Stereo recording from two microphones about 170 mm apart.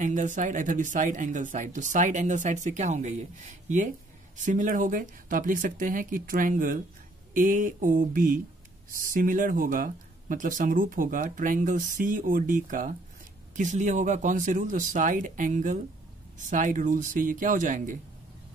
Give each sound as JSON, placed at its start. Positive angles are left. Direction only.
{"t": 0.0, "sound": "speech", "side_deg": -45}